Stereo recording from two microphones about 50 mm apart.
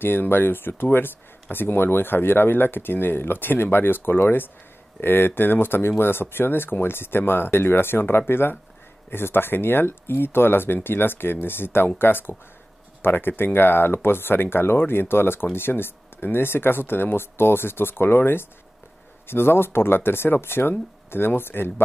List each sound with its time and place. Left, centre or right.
0.0 s speech: left